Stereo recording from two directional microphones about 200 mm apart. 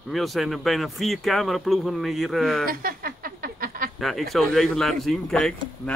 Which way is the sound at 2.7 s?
45° right (ahead or behind).